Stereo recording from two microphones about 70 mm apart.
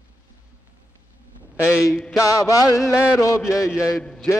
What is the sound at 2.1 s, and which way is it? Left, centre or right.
Music, left.